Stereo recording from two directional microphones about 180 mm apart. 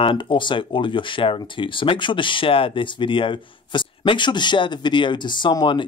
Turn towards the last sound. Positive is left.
turn(degrees=25)  # may be behind; listen again after turning